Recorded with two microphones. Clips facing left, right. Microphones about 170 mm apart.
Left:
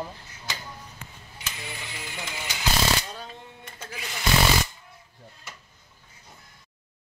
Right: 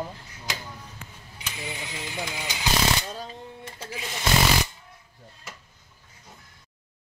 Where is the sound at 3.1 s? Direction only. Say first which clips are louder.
Right 4 dB; 30° right (ahead or behind).